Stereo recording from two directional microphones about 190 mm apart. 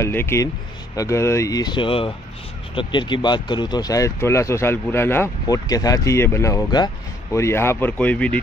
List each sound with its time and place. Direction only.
0.0 s speech: 15° left (ahead or behind)